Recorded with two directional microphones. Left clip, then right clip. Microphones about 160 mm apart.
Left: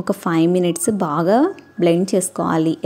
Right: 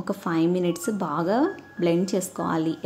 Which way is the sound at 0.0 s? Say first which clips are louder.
Left 7 dB; 40° left (ahead or behind).